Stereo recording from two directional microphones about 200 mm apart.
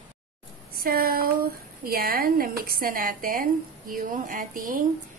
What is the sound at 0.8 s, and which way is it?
A woman's voice, 50° right (ahead or behind).